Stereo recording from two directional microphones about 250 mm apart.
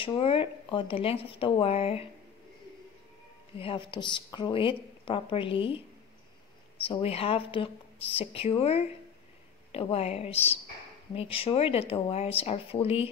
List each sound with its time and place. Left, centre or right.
0.0 s a woman's voice: left
3.5 s a woman's voice: left
6.8 s a woman's voice: left